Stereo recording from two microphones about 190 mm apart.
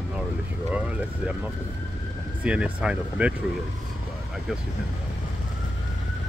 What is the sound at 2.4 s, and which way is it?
Speech, 5° right (ahead or behind).